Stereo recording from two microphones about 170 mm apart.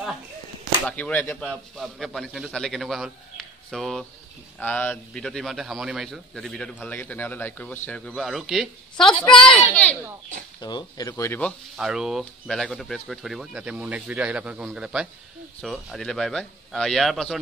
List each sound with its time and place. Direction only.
0.8 s a man's voice: 10° left (ahead or behind)
9.3 s a woman's voice: 30° left (ahead or behind); by 17.4 s centre (ahead or behind)